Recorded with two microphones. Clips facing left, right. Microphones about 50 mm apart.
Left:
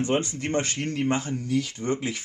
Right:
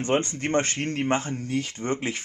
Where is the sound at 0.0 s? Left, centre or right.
Right.